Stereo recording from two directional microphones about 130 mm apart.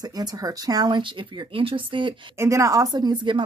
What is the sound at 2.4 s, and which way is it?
A woman's voice, 25° right (ahead or behind).